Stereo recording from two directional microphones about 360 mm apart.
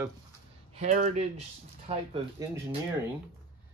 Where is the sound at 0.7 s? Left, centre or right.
Centre.